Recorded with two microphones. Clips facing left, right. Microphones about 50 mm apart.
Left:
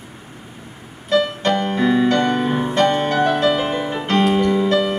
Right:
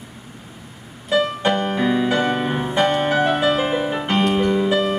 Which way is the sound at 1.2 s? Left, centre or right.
Centre.